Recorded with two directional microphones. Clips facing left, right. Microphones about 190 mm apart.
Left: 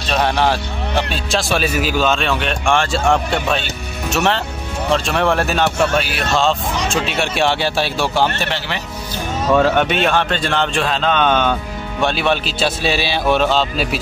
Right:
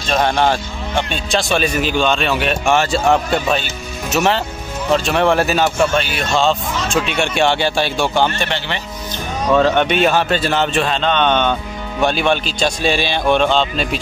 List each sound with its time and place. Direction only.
0.0 s a man's voice: centre (ahead or behind)